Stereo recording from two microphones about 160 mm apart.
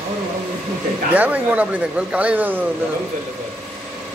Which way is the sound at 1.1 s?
10° right (ahead or behind).